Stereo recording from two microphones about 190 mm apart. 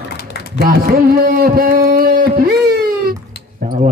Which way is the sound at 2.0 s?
50° right (ahead or behind).